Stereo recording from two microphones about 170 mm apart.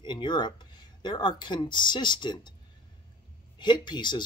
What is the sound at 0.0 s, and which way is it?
Speech, 25° left (ahead or behind).